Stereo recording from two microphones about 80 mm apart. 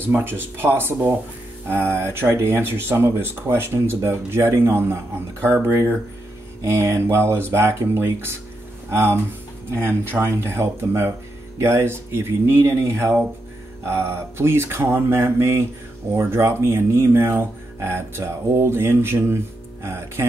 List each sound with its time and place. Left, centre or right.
0.0 s speech: right
9.8 s speech: right